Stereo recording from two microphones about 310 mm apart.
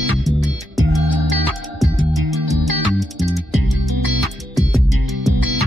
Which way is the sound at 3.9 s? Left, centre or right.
Right.